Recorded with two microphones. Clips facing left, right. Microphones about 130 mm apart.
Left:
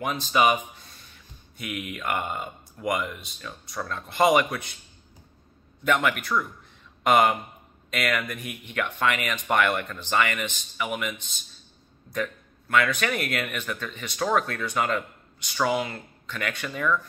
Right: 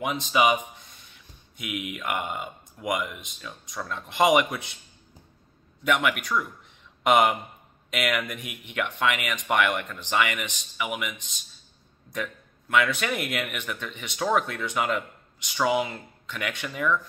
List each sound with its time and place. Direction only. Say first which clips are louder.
0.0 s a man's voice: even; 20° right (ahead or behind)
1.6 s speech: even; 15° right (ahead or behind)
3.4 s speech: left 1 dB; 5° right (ahead or behind); by 4.6 s 20° right (ahead or behind)
5.9 s speech: left 1 dB; 10° right (ahead or behind)